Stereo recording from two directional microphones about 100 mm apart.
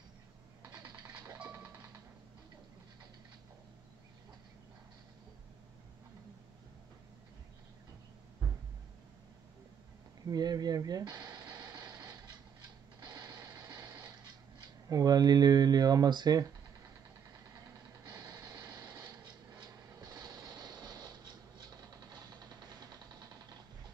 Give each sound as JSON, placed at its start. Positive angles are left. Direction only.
{"t": 0.9, "sound": "music", "side_deg": -15}
{"t": 10.2, "sound": "speech", "side_deg": -40}
{"t": 11.5, "sound": "a sound", "side_deg": -45}
{"t": 14.9, "sound": "speech", "side_deg": -40}
{"t": 18.0, "sound": "printer", "side_deg": -40}
{"t": 19.0, "sound": "mechanisms", "side_deg": -50}
{"t": 20.4, "sound": "a sound", "side_deg": -45}